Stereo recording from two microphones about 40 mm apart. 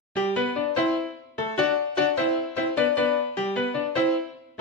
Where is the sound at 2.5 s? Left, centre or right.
Left.